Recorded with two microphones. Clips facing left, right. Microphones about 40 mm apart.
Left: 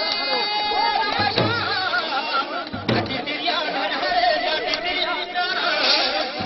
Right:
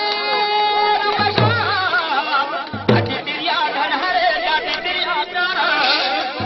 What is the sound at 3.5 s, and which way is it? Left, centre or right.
Chatter, centre.